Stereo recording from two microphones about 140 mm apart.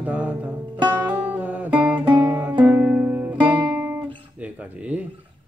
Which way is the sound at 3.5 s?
25° right (ahead or behind).